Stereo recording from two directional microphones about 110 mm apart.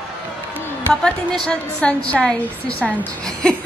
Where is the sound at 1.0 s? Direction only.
5° left (ahead or behind).